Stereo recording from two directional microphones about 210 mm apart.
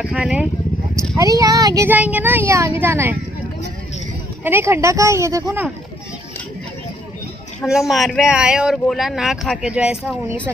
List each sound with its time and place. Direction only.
0.0 s speech: 5° right (ahead or behind)
1.1 s speech: 15° right (ahead or behind)
4.5 s speech: 10° right (ahead or behind)
7.6 s speech: centre (ahead or behind)